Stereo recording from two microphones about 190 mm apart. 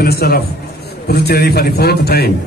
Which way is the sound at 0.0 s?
55° left (ahead or behind).